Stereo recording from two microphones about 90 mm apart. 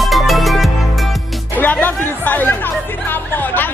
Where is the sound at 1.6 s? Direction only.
20° left (ahead or behind).